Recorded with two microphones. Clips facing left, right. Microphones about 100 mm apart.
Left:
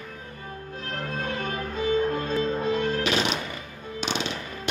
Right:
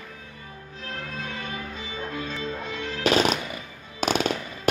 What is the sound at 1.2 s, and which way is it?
Music, 45° left (ahead or behind).